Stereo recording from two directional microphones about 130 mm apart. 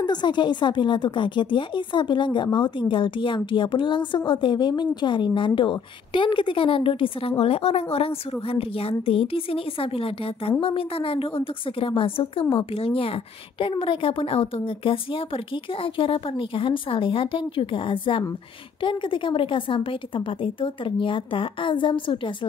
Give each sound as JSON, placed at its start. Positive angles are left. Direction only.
{"t": 0.0, "sound": "a woman's voice", "side_deg": 35}